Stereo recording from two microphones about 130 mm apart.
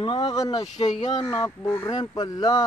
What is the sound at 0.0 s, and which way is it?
Speech, 35° left (ahead or behind).